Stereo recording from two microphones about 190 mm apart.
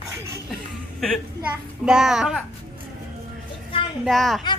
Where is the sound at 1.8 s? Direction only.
5° right (ahead or behind).